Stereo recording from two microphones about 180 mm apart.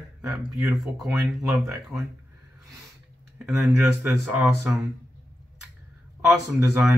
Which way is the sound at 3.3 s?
10° right (ahead or behind).